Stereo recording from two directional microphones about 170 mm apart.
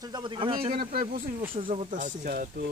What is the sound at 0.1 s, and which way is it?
Speech, 25° right (ahead or behind).